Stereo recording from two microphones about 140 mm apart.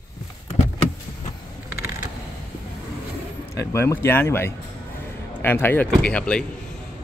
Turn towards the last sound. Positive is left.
turn(degrees=10)  # may be behind; listen again after turning